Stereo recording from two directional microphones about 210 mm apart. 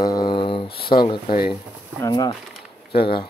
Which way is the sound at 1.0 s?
25° left (ahead or behind).